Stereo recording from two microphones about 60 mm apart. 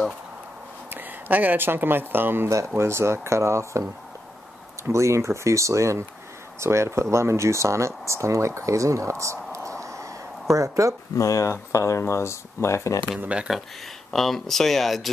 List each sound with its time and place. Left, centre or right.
0.8 s speech: right
2.7 s speech: right
9.2 s whispering: right
10.5 s speech: right
11.1 s speech: left
13.3 s speech: right
14.1 s speech: centre